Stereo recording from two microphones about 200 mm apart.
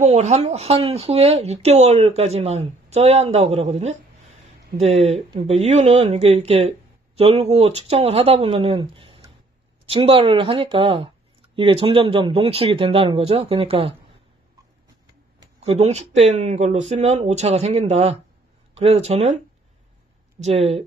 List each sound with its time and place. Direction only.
0.0 s speech: 30° right (ahead or behind)
15.6 s speech: 30° right (ahead or behind)